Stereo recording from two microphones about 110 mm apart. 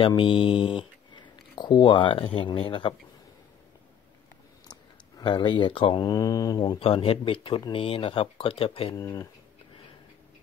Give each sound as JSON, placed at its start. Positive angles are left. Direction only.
{"t": 0.0, "sound": "speech", "side_deg": 55}
{"t": 4.6, "sound": "a sound", "side_deg": 45}
{"t": 6.0, "sound": "speech", "side_deg": 35}
{"t": 6.8, "sound": "speech", "side_deg": 55}
{"t": 8.9, "sound": "speech", "side_deg": 30}